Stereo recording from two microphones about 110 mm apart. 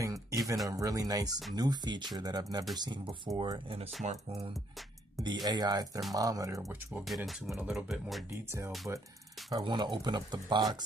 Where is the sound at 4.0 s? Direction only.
90° right.